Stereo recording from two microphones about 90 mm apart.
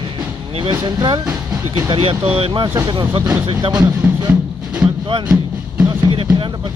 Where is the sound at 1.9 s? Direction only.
85° right.